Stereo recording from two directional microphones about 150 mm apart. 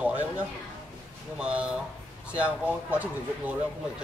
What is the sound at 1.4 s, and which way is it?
Speech, 10° right (ahead or behind).